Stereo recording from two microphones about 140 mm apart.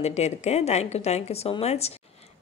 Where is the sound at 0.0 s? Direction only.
50° left (ahead or behind).